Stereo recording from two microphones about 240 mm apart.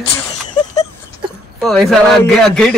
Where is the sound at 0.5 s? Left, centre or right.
Centre.